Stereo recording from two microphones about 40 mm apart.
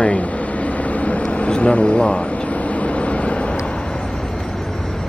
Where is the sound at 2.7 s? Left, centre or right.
Left.